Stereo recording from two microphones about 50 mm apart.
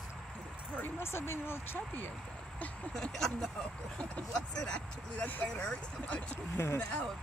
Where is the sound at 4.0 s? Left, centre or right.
Centre.